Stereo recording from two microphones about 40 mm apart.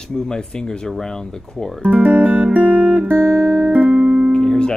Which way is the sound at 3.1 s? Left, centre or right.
Right.